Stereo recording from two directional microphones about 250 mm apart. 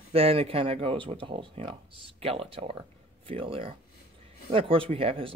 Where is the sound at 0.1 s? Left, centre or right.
Right.